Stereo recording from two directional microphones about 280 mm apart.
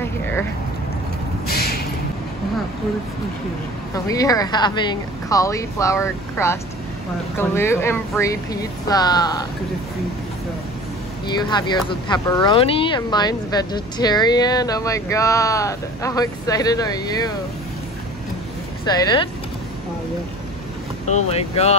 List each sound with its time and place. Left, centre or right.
0.0 s a sound: centre
1.5 s a sound: left
3.9 s speech: centre
11.2 s speech: centre
18.9 s speech: centre
21.1 s speech: left